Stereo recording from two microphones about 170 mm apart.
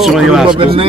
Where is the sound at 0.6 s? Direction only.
35° right (ahead or behind).